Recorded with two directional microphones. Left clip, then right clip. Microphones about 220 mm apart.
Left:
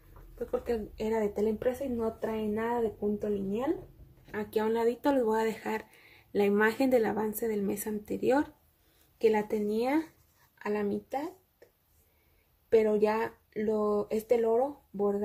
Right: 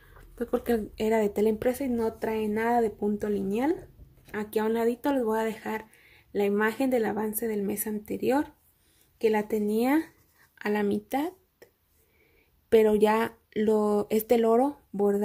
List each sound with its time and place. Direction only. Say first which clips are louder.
0.4 s speech: right 4 dB; 35° right (ahead or behind)
4.3 s speech: right 2 dB; 25° right (ahead or behind)
9.7 s speech: right 4 dB; 30° right (ahead or behind)